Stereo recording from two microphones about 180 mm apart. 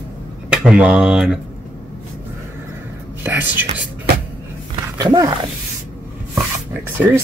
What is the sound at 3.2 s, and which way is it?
Speech, 10° right (ahead or behind).